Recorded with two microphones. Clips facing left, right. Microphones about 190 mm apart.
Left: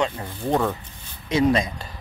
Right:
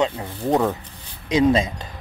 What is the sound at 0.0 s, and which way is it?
Speech, 20° right (ahead or behind).